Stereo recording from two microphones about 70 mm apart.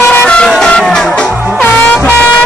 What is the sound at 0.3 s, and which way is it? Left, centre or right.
Vehicle, centre.